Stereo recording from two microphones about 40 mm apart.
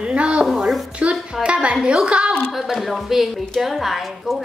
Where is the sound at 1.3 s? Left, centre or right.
Right.